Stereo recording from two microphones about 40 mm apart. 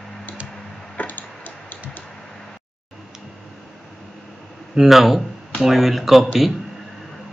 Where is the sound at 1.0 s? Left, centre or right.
Left.